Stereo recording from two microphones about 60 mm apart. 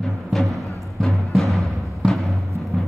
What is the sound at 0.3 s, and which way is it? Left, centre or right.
Timpani, centre.